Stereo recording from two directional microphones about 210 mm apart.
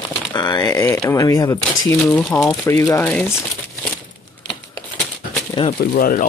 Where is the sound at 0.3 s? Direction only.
20° left (ahead or behind).